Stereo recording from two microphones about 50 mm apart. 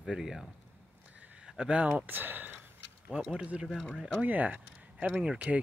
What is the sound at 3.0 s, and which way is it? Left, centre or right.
Speech, centre.